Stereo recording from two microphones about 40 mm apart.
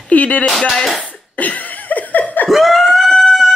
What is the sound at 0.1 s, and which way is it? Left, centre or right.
Speech, left.